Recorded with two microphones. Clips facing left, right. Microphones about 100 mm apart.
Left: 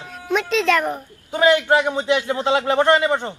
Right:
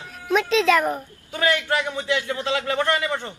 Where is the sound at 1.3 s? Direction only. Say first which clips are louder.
Left 7 dB; 20° left (ahead or behind).